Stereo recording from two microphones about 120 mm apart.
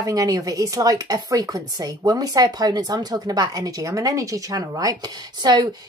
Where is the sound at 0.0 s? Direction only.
30° right (ahead or behind).